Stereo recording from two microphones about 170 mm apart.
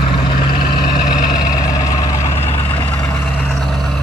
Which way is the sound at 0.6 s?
65° left (ahead or behind).